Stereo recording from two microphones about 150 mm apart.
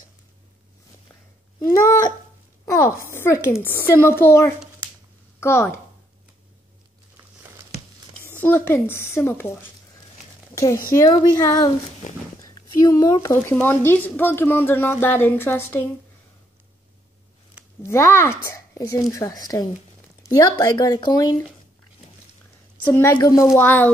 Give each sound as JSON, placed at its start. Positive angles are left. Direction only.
{"t": 1.6, "sound": "speech", "side_deg": 20}
{"t": 2.6, "sound": "wail", "side_deg": 20}
{"t": 3.1, "sound": "a woman's voice", "side_deg": 20}
{"t": 8.3, "sound": "a woman's voice", "side_deg": 15}
{"t": 10.5, "sound": "a sound", "side_deg": 20}
{"t": 11.3, "sound": "speech", "side_deg": 25}
{"t": 12.4, "sound": "a sound", "side_deg": 25}
{"t": 13.5, "sound": "a woman's voice", "side_deg": 15}
{"t": 17.8, "sound": "a woman's voice", "side_deg": 15}
{"t": 22.8, "sound": "a woman's voice", "side_deg": 15}
{"t": 23.1, "sound": "speech", "side_deg": 25}